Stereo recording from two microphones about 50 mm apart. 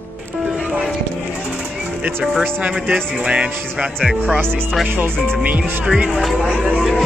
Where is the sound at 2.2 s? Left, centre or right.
Centre.